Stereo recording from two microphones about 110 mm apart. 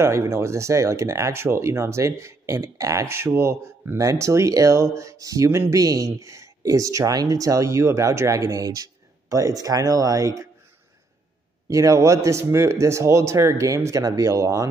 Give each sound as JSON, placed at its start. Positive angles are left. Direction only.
{"t": 0.0, "sound": "speech", "side_deg": -25}
{"t": 11.6, "sound": "speech", "side_deg": -30}